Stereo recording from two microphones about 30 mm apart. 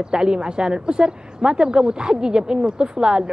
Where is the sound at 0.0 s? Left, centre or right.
Right.